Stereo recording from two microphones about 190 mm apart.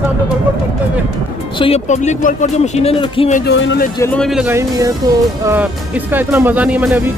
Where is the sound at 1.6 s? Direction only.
35° left (ahead or behind).